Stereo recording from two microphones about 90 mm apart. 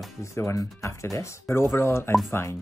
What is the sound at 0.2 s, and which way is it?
Speech, 30° left (ahead or behind).